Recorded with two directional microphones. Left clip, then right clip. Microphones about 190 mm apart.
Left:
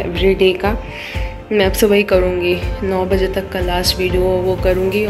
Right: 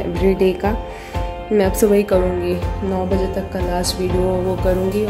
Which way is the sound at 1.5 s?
20° right (ahead or behind).